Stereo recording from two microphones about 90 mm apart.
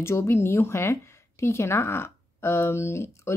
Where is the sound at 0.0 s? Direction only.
30° left (ahead or behind).